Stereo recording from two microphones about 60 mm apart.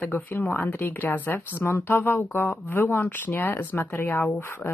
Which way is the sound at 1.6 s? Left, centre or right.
Left.